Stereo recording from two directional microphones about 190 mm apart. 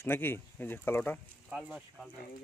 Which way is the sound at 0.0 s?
10° left (ahead or behind).